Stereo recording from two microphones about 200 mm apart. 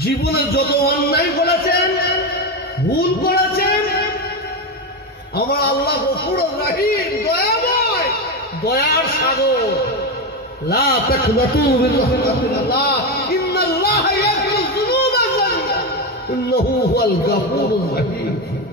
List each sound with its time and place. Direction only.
0.0 s speech: 50° left (ahead or behind)
3.0 s a sound: 50° left (ahead or behind)
5.3 s a man's voice: 50° left (ahead or behind)
10.7 s speech: 50° left (ahead or behind)
11.9 s a sound: 50° left (ahead or behind)
16.4 s speech: 50° left (ahead or behind)